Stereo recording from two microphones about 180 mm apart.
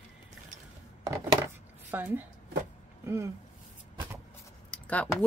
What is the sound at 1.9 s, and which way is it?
Speech, 10° right (ahead or behind).